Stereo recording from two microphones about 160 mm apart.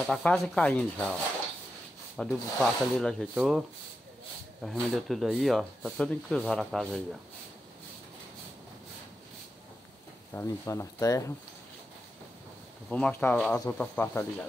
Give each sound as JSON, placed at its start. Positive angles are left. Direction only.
{"t": 0.0, "sound": "speech", "side_deg": 5}
{"t": 2.1, "sound": "speech", "side_deg": 0}
{"t": 4.6, "sound": "speech", "side_deg": 0}
{"t": 10.3, "sound": "speech", "side_deg": 15}
{"t": 12.9, "sound": "speech", "side_deg": 10}